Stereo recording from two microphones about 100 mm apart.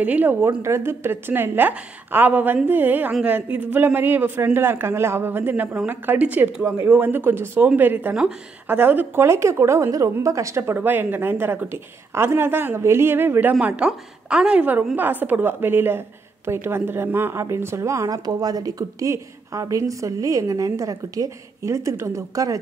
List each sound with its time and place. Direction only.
0.0 s speech: 15° right (ahead or behind); by 22.6 s 35° right (ahead or behind)